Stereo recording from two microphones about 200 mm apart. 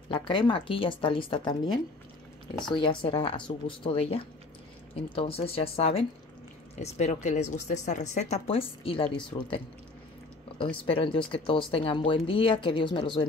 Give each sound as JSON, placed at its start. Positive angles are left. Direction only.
{"t": 0.1, "sound": "speech", "side_deg": 25}
{"t": 9.3, "sound": "speech", "side_deg": 15}
{"t": 10.9, "sound": "speech", "side_deg": 25}